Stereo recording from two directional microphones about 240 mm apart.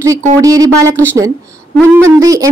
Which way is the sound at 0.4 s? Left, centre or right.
Centre.